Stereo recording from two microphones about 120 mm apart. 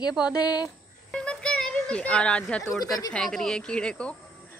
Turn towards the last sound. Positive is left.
turn(degrees=10)  # may be behind; listen again after turning